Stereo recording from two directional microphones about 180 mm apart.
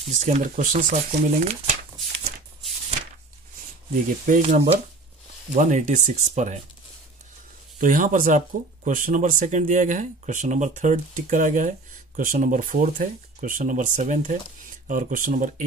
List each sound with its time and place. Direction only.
0.2 s speech: 45° right (ahead or behind)
4.3 s speech: 40° right (ahead or behind)
7.8 s speech: 50° right (ahead or behind)